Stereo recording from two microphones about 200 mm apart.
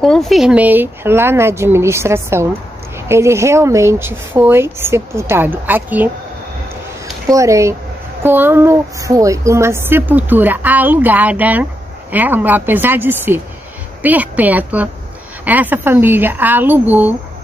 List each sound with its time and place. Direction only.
0.0 s a woman's voice: centre (ahead or behind)
7.2 s a woman's voice: 15° right (ahead or behind)